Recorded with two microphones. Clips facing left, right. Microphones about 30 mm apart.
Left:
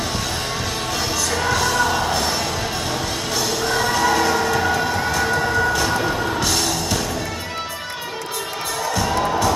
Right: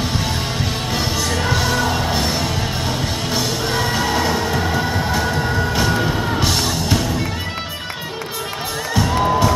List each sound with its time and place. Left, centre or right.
0.9 s music: centre
9.0 s music: centre